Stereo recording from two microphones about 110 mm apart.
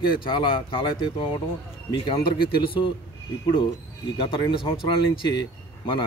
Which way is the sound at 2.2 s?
50° left (ahead or behind).